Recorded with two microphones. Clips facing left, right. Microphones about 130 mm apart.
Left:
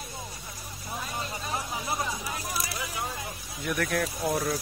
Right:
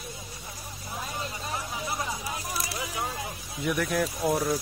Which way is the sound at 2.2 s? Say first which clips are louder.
Even; 15° right (ahead or behind).